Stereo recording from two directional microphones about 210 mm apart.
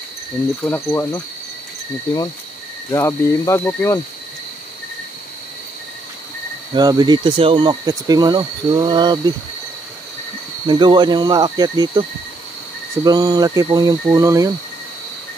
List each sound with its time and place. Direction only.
0.7 s cricket: 10° left (ahead or behind)
2.9 s cricket: 15° left (ahead or behind)
6.7 s speech: 20° right (ahead or behind)
10.7 s speech: 20° right (ahead or behind)
13.0 s speech: 20° right (ahead or behind)